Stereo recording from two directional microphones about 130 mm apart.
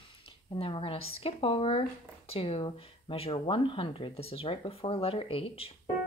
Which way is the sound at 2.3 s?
45° left (ahead or behind).